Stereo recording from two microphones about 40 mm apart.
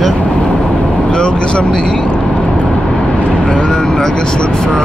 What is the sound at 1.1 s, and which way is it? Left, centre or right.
Speech, left.